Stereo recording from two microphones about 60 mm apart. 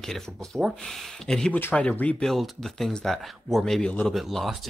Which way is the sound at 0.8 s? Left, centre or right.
Centre.